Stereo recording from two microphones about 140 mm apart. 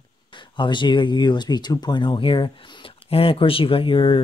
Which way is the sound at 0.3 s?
35° left (ahead or behind).